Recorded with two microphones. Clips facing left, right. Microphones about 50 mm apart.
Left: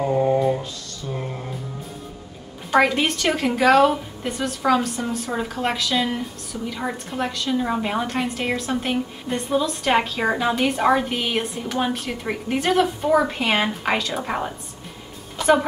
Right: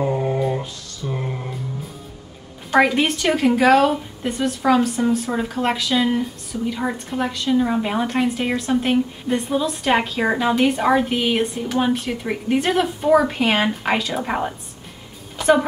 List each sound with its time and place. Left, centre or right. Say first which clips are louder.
0.0 s mantra: left 2 dB; centre
1.0 s a sound: right 3 dB; right
2.7 s a woman's voice: right 2 dB; centre
15.3 s music: right 1 dB; centre